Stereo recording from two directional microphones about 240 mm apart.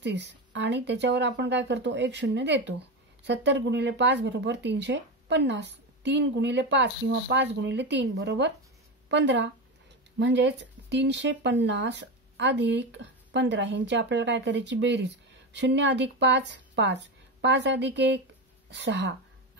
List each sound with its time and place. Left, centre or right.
0.0 s speech: right